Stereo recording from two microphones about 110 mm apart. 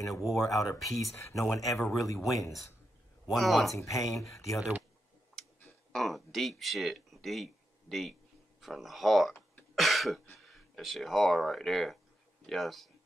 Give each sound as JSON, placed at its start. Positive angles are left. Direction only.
{"t": 0.1, "sound": "speech", "side_deg": 0}
{"t": 1.1, "sound": "speech", "side_deg": 25}
{"t": 3.3, "sound": "speech", "side_deg": 0}
{"t": 3.7, "sound": "speech", "side_deg": 30}
{"t": 5.9, "sound": "speech", "side_deg": 0}